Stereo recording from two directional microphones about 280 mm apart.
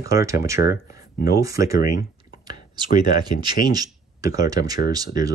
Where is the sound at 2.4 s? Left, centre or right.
Centre.